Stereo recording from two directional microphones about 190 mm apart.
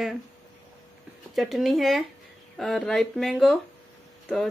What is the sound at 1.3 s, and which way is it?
Speech, centre (ahead or behind).